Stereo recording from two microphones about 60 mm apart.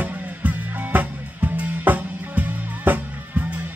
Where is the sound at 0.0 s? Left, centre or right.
Right.